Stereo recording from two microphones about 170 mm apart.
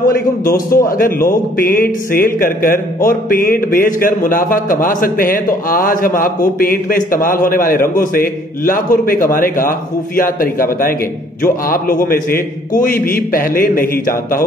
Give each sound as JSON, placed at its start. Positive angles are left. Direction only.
{"t": 0.0, "sound": "a man's voice", "side_deg": 60}